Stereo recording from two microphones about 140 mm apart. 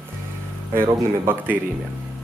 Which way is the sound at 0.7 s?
15° right (ahead or behind).